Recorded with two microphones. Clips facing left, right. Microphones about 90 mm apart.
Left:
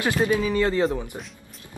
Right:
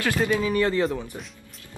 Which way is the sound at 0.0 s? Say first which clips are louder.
Left 1 dB; 20° left (ahead or behind).